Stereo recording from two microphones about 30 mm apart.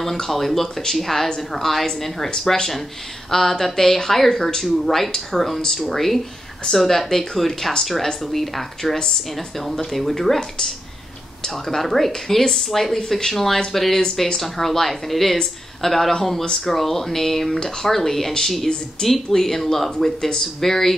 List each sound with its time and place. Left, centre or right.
0.2 s a woman's voice: centre
11.4 s a woman's voice: centre
19.0 s speech: left
19.3 s a woman's voice: centre